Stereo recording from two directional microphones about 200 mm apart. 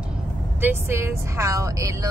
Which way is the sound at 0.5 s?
10° right (ahead or behind).